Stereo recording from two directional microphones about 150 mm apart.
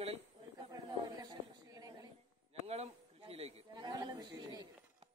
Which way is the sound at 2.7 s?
40° right (ahead or behind).